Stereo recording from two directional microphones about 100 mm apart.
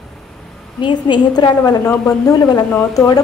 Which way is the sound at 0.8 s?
50° left (ahead or behind).